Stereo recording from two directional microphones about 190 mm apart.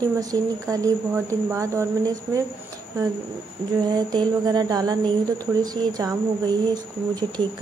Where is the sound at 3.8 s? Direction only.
20° right (ahead or behind).